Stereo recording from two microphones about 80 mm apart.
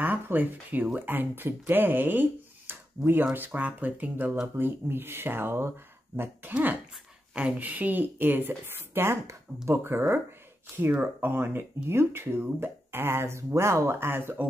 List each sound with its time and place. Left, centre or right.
0.0 s speech: right